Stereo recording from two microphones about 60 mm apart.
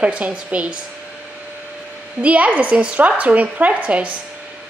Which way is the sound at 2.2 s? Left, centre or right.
Right.